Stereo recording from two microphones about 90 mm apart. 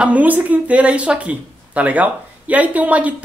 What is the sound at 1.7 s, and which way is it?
Speech, 15° right (ahead or behind).